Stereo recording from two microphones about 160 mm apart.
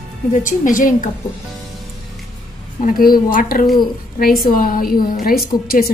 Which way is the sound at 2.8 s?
60° left (ahead or behind).